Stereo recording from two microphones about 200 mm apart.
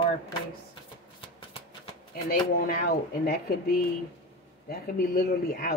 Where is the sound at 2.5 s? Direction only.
45° left (ahead or behind).